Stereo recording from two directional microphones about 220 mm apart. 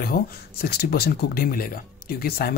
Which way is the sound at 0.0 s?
45° left (ahead or behind).